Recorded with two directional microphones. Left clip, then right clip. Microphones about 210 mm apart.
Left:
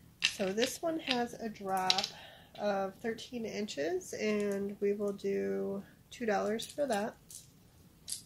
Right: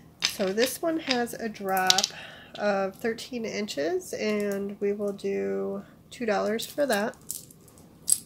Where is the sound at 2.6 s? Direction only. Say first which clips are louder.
Right 7 dB; 25° right (ahead or behind).